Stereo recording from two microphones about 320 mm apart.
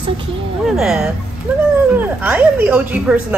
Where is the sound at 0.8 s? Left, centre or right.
Centre.